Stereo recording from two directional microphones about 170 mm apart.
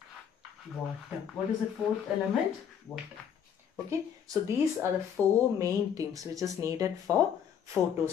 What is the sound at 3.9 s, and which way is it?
Speech, 20° right (ahead or behind).